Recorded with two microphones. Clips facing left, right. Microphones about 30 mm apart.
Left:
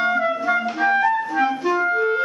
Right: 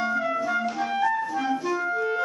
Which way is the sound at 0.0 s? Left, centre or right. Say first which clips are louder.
Left 5 dB; left.